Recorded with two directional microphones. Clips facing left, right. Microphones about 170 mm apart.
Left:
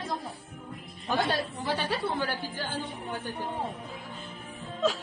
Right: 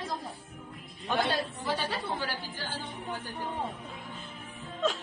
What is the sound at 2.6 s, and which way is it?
Music, 55° left (ahead or behind).